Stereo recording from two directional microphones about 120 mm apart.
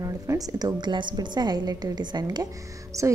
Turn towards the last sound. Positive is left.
turn(degrees=-25)  # may be behind; listen again after turning